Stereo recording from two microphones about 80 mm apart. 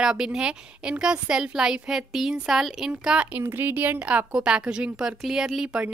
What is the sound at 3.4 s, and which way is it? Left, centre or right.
Speech, right.